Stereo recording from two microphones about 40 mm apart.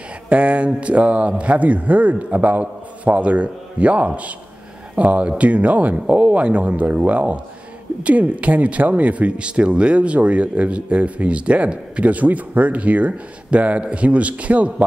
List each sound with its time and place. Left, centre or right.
0.3 s speech: right